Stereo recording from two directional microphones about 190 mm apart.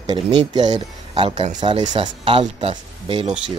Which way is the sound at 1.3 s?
40° right (ahead or behind).